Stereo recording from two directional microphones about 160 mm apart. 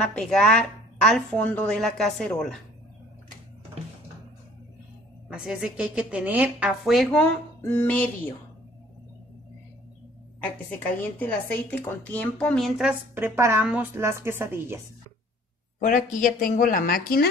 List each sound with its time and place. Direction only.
0.0 s a woman's voice: 5° left (ahead or behind)
5.3 s a woman's voice: 5° right (ahead or behind); by 8.1 s 10° left (ahead or behind)
11.1 s a woman's voice: 10° left (ahead or behind)
13.1 s a woman's voice: 15° right (ahead or behind)
15.8 s speech: 55° left (ahead or behind)